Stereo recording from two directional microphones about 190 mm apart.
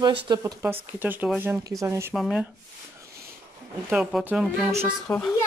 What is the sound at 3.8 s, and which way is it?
Speech, 5° right (ahead or behind).